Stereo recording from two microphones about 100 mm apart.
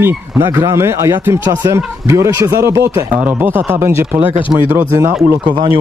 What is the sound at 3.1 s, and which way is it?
Speech, 15° right (ahead or behind).